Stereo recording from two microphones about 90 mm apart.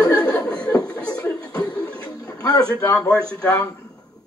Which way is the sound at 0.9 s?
45° left (ahead or behind).